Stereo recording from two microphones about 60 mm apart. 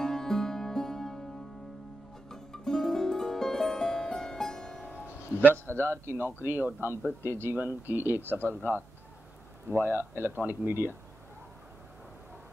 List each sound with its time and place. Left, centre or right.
0.0 s music: centre
2.2 s music: centre
5.8 s speech: right
7.5 s speech: right
8.2 s speech: left
9.7 s speech: right